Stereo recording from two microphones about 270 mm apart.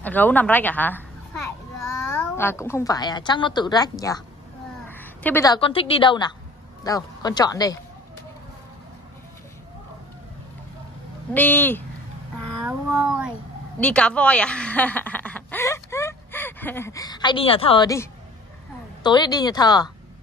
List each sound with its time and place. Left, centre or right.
0.0 s a woman's voice: centre
2.3 s a woman's voice: centre
11.3 s a woman's voice: centre
12.6 s cat: centre
13.7 s speech: centre
19.0 s a woman's voice: centre